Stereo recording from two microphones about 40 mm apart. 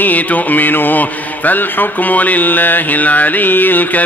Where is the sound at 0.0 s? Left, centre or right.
Left.